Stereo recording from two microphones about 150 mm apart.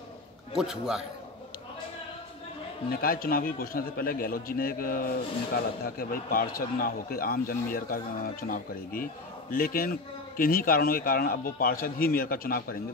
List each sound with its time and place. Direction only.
0.5 s a man's voice: 5° right (ahead or behind)
2.9 s a man's voice: 75° left (ahead or behind)